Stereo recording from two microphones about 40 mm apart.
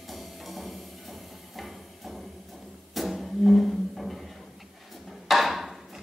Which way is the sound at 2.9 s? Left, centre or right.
Centre.